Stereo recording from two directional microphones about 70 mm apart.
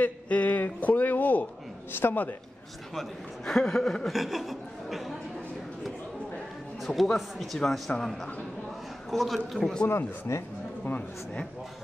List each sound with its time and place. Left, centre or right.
0.0 s a sound: left
1.9 s speech: left
2.9 s a man's voice: centre
6.8 s a man's voice: centre
9.6 s a man's voice: centre
9.8 s speech: left
10.9 s speech: centre